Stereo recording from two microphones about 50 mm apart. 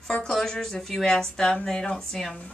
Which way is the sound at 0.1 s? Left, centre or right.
Centre.